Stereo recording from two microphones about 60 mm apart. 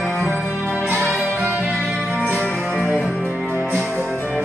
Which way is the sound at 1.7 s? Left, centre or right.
Centre.